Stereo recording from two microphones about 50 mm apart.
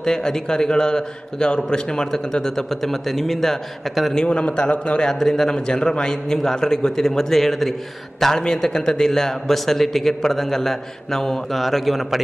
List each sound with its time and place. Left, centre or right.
0.0 s a man's voice: centre
4.1 s a man's voice: centre